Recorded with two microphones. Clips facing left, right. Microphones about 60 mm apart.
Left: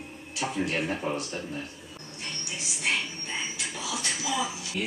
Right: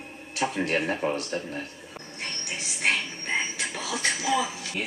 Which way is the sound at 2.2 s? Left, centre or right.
Right.